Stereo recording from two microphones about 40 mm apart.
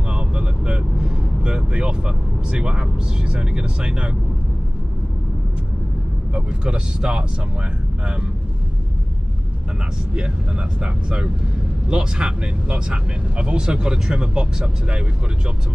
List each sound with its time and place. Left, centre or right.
0.1 s vehicle: right
6.3 s speech: right
10.1 s speech: right